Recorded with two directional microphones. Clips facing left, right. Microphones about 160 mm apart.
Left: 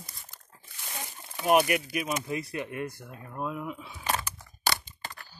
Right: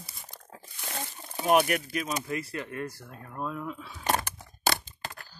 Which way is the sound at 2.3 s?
20° left (ahead or behind).